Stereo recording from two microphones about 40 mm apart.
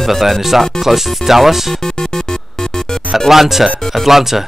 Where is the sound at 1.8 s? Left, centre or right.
Centre.